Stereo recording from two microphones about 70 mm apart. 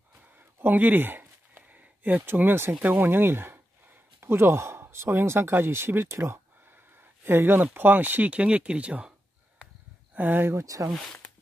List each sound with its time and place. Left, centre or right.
0.6 s a sound: right
2.8 s speech: right
10.1 s speech: right
10.6 s speech: right